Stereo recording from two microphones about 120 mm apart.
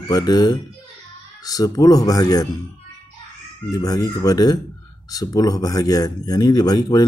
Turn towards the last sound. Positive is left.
turn(degrees=35)  # may be behind; listen again after turning